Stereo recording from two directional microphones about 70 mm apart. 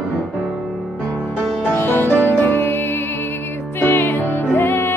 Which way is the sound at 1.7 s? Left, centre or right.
Left.